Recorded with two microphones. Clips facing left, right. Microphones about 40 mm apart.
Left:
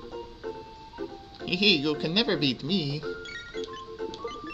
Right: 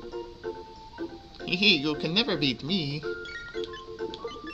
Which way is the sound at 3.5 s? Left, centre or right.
Left.